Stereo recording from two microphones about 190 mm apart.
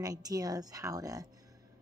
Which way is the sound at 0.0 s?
20° right (ahead or behind).